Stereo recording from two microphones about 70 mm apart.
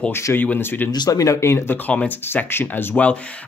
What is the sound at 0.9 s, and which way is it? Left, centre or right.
Speech, left.